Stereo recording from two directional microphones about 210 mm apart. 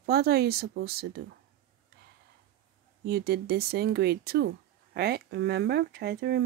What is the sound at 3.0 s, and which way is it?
Speech, 50° right (ahead or behind).